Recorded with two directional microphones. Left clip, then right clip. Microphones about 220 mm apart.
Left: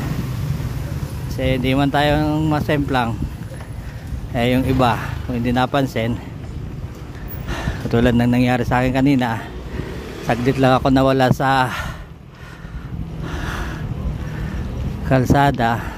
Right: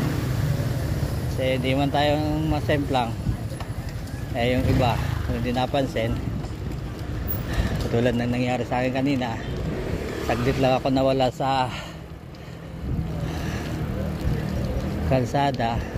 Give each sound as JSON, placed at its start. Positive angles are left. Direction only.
{"t": 1.4, "sound": "a man's voice", "side_deg": 35}
{"t": 4.4, "sound": "a man's voice", "side_deg": 35}
{"t": 7.5, "sound": "a man's voice", "side_deg": 35}
{"t": 15.0, "sound": "a man's voice", "side_deg": 30}